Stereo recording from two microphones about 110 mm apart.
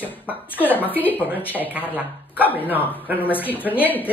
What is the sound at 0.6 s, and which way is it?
A woman's voice, 15° left (ahead or behind).